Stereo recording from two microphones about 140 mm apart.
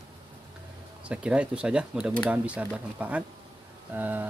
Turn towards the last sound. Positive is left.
turn(degrees=-15)  # may be behind; listen again after turning